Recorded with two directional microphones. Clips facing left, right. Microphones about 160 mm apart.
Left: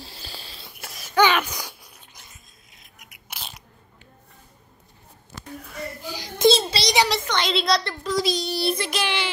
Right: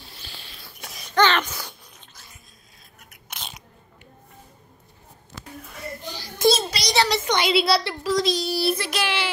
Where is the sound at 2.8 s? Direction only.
15° left (ahead or behind).